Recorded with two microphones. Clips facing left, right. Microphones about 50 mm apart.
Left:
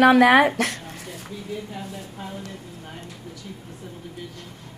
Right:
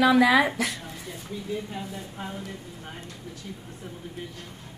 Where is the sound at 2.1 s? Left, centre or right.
Right.